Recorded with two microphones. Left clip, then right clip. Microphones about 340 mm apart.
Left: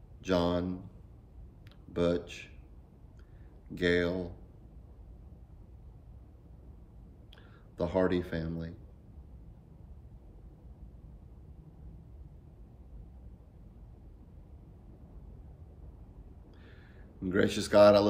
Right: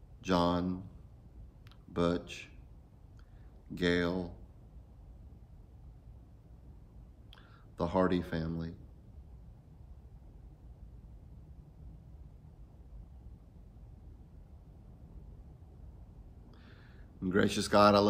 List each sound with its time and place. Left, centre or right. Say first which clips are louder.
0.2 s speech: left 1 dB; centre
2.0 s speech: left 2 dB; centre
3.7 s speech: left 3 dB; centre
7.7 s speech: left 1 dB; centre
17.2 s speech: left 1 dB; centre